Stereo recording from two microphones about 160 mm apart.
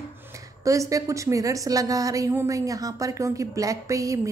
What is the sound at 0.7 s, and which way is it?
A woman's voice, 20° right (ahead or behind).